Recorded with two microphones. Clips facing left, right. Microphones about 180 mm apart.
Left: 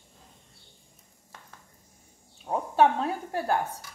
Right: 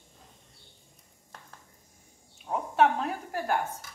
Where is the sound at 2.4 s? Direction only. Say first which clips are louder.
Left 2 dB; 30° left (ahead or behind).